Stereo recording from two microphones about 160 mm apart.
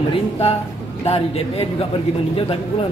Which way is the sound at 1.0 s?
40° left (ahead or behind).